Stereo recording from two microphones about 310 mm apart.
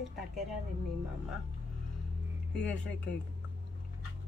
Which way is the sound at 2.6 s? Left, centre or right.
Centre.